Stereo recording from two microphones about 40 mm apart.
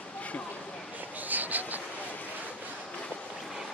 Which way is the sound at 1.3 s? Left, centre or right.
Right.